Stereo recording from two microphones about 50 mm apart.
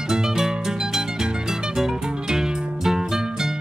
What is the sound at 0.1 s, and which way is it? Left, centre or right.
Music, centre.